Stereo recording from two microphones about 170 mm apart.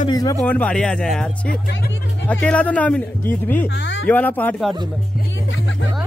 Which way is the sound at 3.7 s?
90° left.